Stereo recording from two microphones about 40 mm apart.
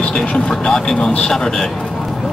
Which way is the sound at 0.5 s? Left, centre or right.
Centre.